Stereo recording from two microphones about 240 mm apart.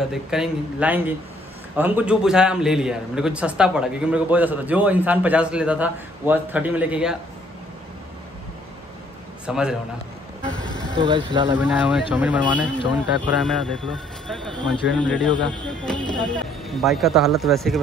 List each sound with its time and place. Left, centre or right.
0.0 s a man's voice: centre
9.5 s a man's voice: centre
10.5 s vehicle: centre
11.0 s speech: centre
11.5 s a man's voice: centre
14.2 s a sound: centre
15.0 s a man's voice: centre
15.6 s music: centre
16.2 s a man's voice: centre